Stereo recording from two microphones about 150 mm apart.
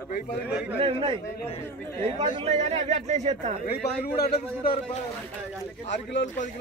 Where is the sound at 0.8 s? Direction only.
35° right (ahead or behind).